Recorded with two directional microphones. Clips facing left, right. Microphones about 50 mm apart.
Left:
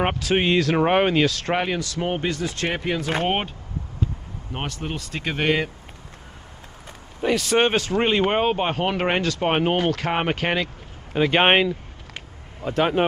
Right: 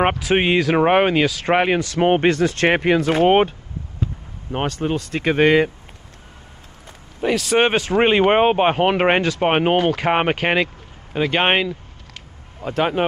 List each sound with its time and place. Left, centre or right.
0.2 s speech: centre
1.5 s speech: right
3.3 s speech: right
4.6 s speech: right
7.2 s speech: centre
7.5 s speech: centre
11.1 s speech: centre